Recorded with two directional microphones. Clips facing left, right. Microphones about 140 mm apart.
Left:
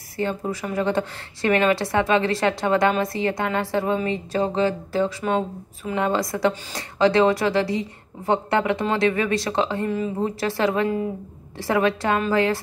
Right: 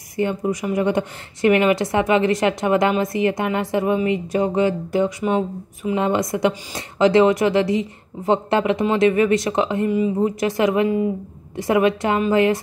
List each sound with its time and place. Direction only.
0.2 s speech: 15° right (ahead or behind)